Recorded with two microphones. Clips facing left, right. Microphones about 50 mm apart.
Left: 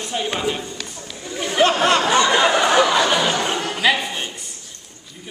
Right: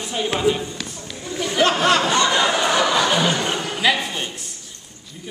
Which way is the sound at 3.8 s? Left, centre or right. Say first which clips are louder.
Left 1 dB; centre.